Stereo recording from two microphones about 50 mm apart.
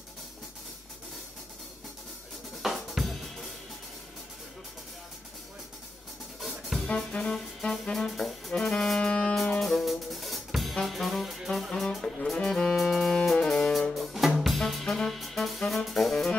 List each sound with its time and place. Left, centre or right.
2.6 s drum kit: centre
6.4 s music: centre
7.1 s music: centre
12.7 s music: centre
13.5 s music: centre
13.9 s music: centre
14.4 s brass instrument: centre
15.0 s music: centre